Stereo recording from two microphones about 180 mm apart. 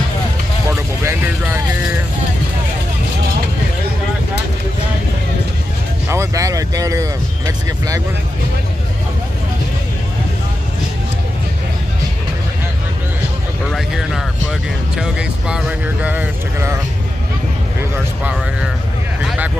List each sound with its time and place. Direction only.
0.7 s vehicle: 15° right (ahead or behind)
6.0 s vehicle: 15° right (ahead or behind)
13.7 s vehicle: centre (ahead or behind)
19.2 s a sound: 5° right (ahead or behind)